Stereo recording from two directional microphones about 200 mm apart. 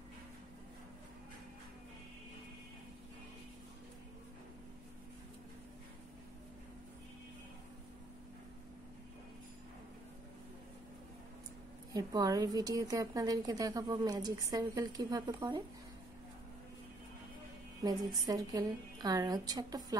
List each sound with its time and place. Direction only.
11.9 s a woman's voice: 20° right (ahead or behind)
17.8 s a woman's voice: 20° right (ahead or behind)